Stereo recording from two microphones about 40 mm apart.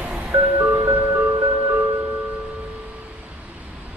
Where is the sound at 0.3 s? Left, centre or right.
Right.